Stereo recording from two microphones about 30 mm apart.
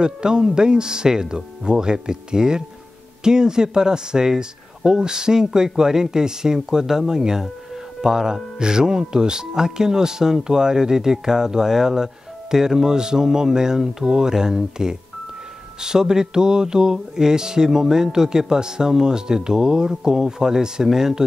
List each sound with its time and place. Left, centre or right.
0.0 s speech: right